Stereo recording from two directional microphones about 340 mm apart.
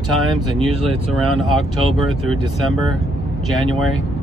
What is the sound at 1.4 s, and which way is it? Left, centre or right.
Speech, centre.